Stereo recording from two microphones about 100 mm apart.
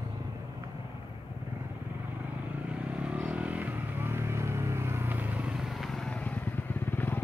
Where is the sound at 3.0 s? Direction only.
10° right (ahead or behind).